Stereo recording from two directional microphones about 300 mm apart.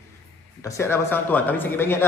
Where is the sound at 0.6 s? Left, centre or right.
Centre.